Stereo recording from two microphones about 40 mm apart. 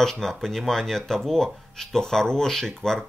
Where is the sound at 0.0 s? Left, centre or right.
Centre.